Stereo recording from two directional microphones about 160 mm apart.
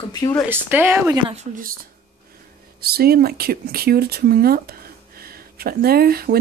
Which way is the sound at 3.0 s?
75° right (ahead or behind).